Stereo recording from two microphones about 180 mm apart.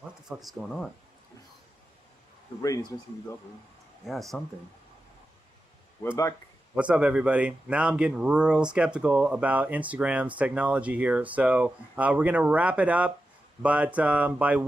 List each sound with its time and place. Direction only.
0.4 s speech: centre (ahead or behind)
2.6 s speech: 20° left (ahead or behind)
4.0 s speech: centre (ahead or behind)
6.7 s speech: 5° right (ahead or behind)